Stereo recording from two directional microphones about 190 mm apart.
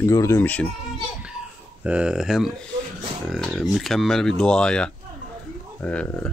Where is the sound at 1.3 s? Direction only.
5° right (ahead or behind).